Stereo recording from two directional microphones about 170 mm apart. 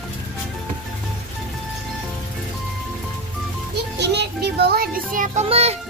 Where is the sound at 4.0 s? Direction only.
80° right; by 5.4 s 50° right (ahead or behind).